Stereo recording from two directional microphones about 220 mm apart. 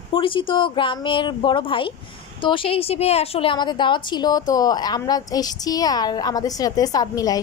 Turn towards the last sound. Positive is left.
turn(degrees=15)  # may be behind; listen again after turning